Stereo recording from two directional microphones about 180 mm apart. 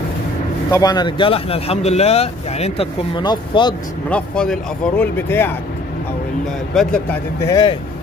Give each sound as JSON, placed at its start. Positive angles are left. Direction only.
{"t": 0.7, "sound": "speech", "side_deg": 20}
{"t": 4.1, "sound": "speech", "side_deg": 5}
{"t": 6.7, "sound": "speech", "side_deg": 5}
{"t": 7.4, "sound": "speech", "side_deg": 20}